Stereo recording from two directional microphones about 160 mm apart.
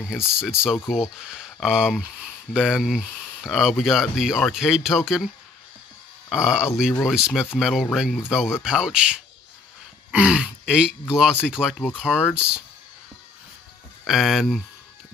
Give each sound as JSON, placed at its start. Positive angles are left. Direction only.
{"t": 0.1, "sound": "speech", "side_deg": -5}
{"t": 6.3, "sound": "speech", "side_deg": -5}
{"t": 14.0, "sound": "speech", "side_deg": 0}